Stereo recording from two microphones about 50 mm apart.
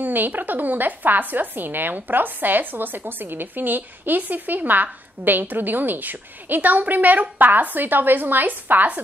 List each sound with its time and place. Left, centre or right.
0.0 s a woman's voice: right